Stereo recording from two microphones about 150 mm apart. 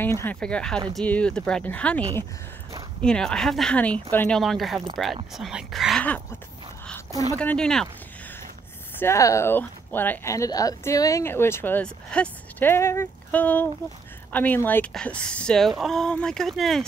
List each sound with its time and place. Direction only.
0.0 s speech: 15° left (ahead or behind)
4.4 s speech: centre (ahead or behind)
7.3 s speech: 5° left (ahead or behind)
9.0 s speech: 20° left (ahead or behind); by 16.8 s centre (ahead or behind)